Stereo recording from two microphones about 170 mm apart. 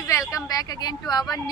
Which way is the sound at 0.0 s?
15° left (ahead or behind).